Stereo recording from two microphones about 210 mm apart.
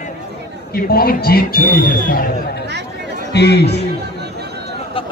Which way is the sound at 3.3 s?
50° left (ahead or behind).